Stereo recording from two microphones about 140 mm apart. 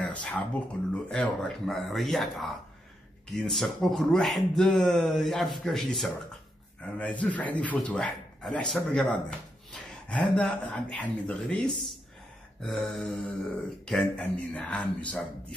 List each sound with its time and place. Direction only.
0.0 s speech: 10° left (ahead or behind)